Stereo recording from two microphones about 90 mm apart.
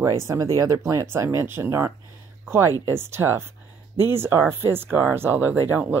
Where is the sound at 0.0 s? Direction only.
35° right (ahead or behind).